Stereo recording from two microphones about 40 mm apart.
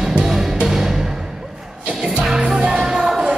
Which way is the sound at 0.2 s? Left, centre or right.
Centre.